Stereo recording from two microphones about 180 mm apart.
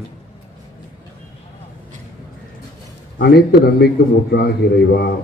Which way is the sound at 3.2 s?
65° left (ahead or behind).